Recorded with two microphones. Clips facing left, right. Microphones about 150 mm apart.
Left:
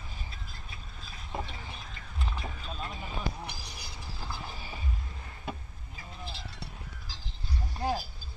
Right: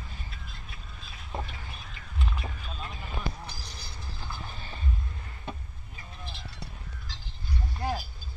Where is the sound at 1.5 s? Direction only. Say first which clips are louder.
Left 1 dB; 30° left (ahead or behind).